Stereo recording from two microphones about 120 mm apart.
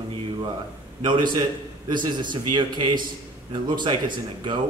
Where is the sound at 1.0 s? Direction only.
40° right (ahead or behind).